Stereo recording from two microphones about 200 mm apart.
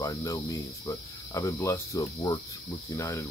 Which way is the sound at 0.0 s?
15° left (ahead or behind).